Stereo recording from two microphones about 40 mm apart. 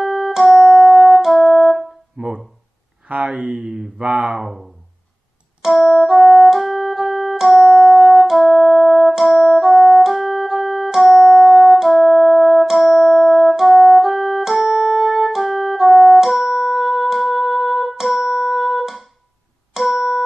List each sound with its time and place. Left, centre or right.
0.0 s music: centre
2.1 s a sound: right
3.1 s speech: right
4.0 s speech: right
4.3 s speech: centre
5.7 s music: centre